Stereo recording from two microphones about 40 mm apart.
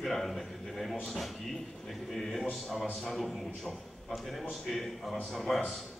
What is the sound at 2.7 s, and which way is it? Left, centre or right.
A man's voice, centre.